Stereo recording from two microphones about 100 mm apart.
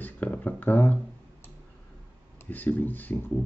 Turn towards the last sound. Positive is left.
turn(degrees=20)  # may be behind; listen again after turning